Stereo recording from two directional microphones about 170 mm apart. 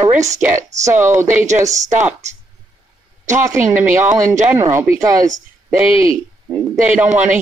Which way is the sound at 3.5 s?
15° right (ahead or behind).